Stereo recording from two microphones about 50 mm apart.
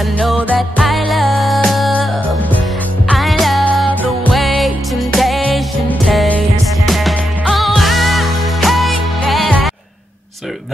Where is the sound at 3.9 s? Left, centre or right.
Left.